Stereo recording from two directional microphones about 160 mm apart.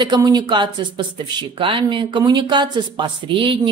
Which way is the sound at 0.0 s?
25° right (ahead or behind).